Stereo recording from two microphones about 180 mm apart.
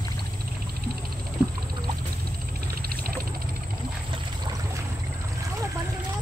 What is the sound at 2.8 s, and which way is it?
Vehicle, 55° right (ahead or behind).